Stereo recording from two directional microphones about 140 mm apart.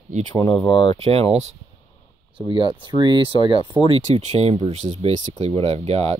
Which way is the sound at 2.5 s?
35° right (ahead or behind).